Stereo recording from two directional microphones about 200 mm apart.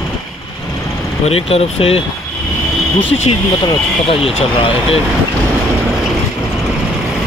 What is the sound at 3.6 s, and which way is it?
Speech, 25° left (ahead or behind).